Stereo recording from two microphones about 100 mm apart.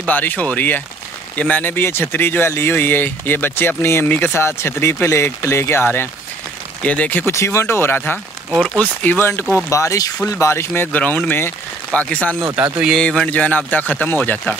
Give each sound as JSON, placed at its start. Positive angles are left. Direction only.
{"t": 0.0, "sound": "speech", "side_deg": 15}
{"t": 7.3, "sound": "speech", "side_deg": 30}
{"t": 8.5, "sound": "speech", "side_deg": 5}
{"t": 9.0, "sound": "speech", "side_deg": 15}
{"t": 9.7, "sound": "speech", "side_deg": 30}
{"t": 12.6, "sound": "speech", "side_deg": -15}
{"t": 12.9, "sound": "speech", "side_deg": 5}